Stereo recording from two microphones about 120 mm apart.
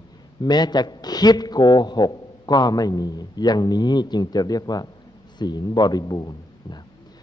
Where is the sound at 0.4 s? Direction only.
35° left (ahead or behind).